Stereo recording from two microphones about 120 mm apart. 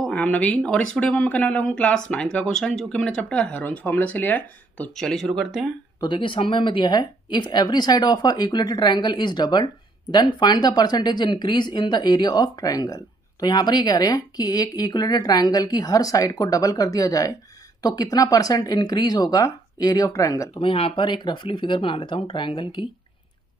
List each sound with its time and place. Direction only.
0.0 s speech: 10° left (ahead or behind)
5.9 s speech: 40° left (ahead or behind)
20.5 s speech: 50° left (ahead or behind)